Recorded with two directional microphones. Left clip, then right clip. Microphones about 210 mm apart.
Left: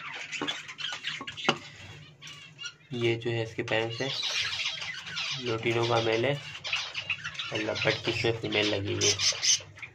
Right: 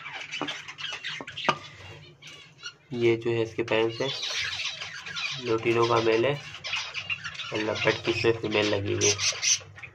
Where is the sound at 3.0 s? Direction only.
10° right (ahead or behind).